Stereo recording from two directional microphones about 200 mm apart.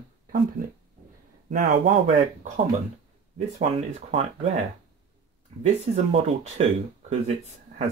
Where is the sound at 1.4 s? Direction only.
40° right (ahead or behind).